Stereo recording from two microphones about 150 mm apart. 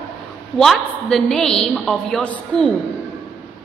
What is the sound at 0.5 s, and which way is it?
A woman's voice, centre (ahead or behind).